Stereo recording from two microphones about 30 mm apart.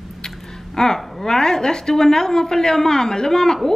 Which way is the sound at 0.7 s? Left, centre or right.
Centre.